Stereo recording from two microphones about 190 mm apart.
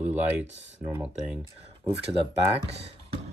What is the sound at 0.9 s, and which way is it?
Speech, 10° right (ahead or behind).